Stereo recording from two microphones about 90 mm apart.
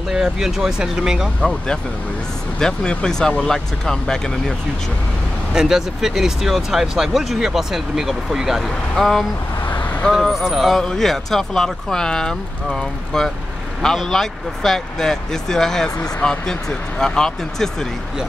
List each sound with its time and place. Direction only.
0.1 s speech: 5° right (ahead or behind)
2.6 s speech: 10° left (ahead or behind)
5.5 s speech: 5° right (ahead or behind)
9.7 s vehicle: 20° left (ahead or behind)
10.1 s speech: 5° right (ahead or behind)